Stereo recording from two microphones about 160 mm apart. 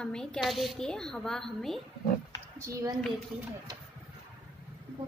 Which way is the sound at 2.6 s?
20° right (ahead or behind).